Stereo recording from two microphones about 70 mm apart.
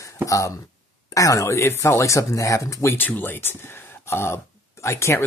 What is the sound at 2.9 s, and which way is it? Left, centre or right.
Speech, left.